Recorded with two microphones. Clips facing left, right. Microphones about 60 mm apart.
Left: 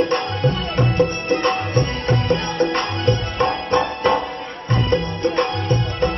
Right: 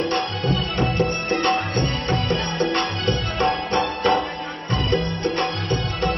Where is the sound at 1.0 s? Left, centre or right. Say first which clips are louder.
Left 2 dB; left.